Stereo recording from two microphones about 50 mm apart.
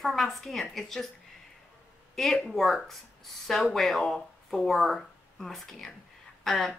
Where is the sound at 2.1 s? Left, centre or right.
Centre.